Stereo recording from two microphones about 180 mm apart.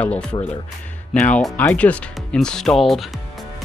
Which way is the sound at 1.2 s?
5° left (ahead or behind).